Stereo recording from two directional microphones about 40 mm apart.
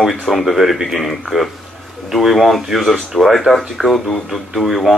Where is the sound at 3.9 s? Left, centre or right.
Centre.